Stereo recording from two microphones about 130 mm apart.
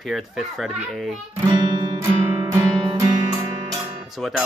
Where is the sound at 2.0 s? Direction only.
25° right (ahead or behind).